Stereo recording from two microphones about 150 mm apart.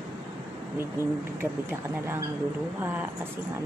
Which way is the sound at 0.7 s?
15° right (ahead or behind).